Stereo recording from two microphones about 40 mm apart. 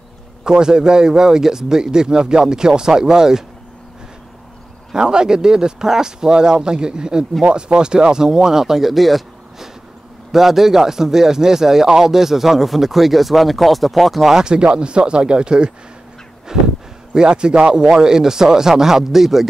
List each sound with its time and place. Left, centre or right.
0.4 s speech: centre
4.9 s speech: centre
14.3 s speech: right
16.5 s a sound: centre
17.1 s speech: right